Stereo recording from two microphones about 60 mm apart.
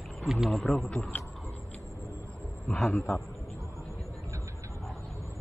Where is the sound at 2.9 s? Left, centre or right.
Left.